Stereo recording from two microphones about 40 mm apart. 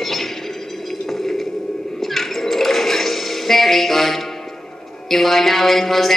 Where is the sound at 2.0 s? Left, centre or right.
Centre.